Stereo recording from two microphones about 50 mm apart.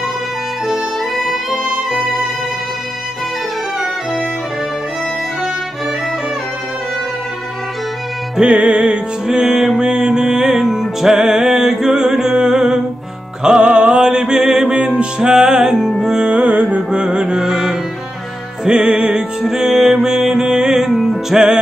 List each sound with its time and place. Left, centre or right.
0.7 s music: centre
8.4 s music: right
18.7 s music: right
19.4 s music: centre